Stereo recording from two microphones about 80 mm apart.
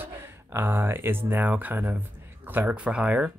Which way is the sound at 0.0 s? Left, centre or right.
Right.